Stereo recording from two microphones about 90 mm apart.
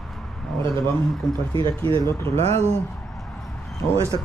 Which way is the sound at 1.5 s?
80° right.